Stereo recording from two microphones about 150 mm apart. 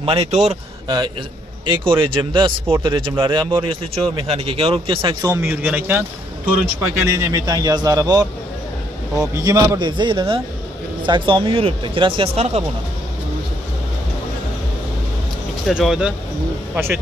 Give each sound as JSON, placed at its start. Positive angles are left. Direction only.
{"t": 0.0, "sound": "a man's voice", "side_deg": -40}
{"t": 0.8, "sound": "speech", "side_deg": -30}
{"t": 5.4, "sound": "a man's voice", "side_deg": -15}
{"t": 9.3, "sound": "a man's voice", "side_deg": -20}
{"t": 15.6, "sound": "speech", "side_deg": 0}
{"t": 16.7, "sound": "a man's voice", "side_deg": -15}